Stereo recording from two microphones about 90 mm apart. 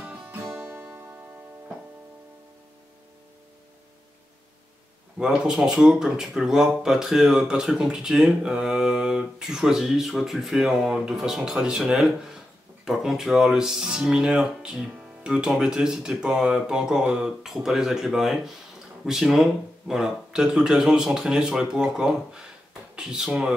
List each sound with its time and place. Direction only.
0.7 s music: 25° right (ahead or behind)
5.2 s speech: 5° right (ahead or behind)